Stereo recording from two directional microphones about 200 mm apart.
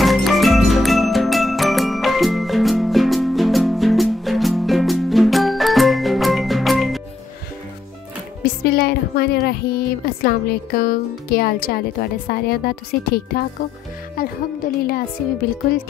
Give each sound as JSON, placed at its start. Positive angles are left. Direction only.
{"t": 0.0, "sound": "music", "side_deg": 0}
{"t": 8.6, "sound": "a woman's voice", "side_deg": 50}
{"t": 14.8, "sound": "a woman's voice", "side_deg": 50}